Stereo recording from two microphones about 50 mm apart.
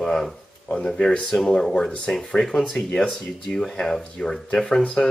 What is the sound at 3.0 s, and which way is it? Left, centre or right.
Speech, centre.